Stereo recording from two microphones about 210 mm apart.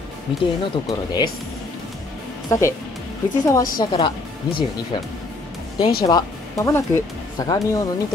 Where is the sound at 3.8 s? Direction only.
20° left (ahead or behind).